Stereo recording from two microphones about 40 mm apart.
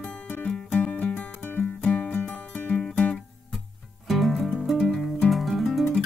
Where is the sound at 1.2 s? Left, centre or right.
Left.